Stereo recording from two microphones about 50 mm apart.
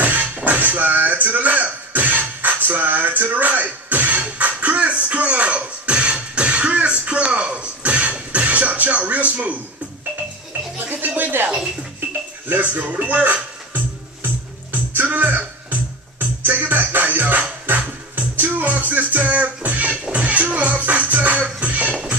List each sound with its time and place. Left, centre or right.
0.0 s music: right
10.9 s music: right
12.4 s speech: right
12.8 s music: right